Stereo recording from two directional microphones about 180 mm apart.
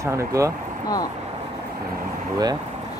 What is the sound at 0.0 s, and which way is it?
Speech, 15° right (ahead or behind).